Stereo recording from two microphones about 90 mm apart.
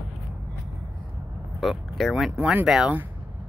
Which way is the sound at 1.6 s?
Centre (ahead or behind).